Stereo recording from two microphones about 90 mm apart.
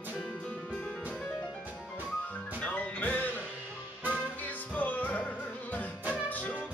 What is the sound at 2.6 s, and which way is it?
Music, 15° left (ahead or behind).